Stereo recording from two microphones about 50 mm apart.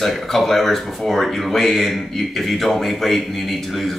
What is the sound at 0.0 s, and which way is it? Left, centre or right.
Speech, centre.